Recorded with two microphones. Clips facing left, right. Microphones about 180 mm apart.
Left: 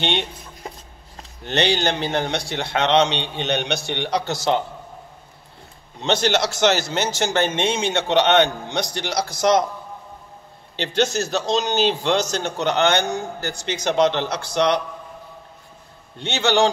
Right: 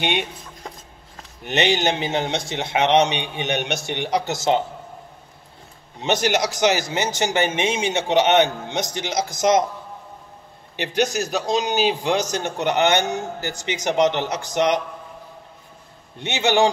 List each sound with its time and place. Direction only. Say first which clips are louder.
0.0 s a man's voice: even; 10° right (ahead or behind)
1.4 s a man's voice: even; 20° right (ahead or behind)
5.9 s a man's voice: even; 15° right (ahead or behind)
10.8 s a man's voice: left 1 dB; 15° right (ahead or behind)
13.0 s speech: even; 5° right (ahead or behind)
13.4 s a man's voice: even; 15° right (ahead or behind)
16.2 s a man's voice: even; 15° right (ahead or behind)